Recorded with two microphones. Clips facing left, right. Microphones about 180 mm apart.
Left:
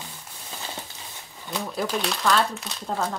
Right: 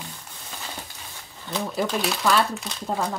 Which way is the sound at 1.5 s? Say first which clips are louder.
Right 2 dB; centre (ahead or behind).